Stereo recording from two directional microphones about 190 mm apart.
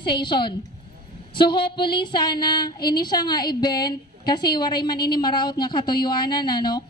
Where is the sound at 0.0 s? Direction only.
25° left (ahead or behind).